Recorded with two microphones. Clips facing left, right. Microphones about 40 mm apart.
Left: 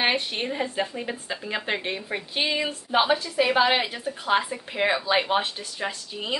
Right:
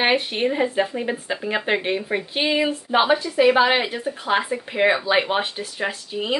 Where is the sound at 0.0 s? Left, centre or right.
Centre.